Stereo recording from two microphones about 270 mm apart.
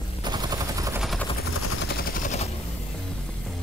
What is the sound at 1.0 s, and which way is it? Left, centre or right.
Vehicle, centre.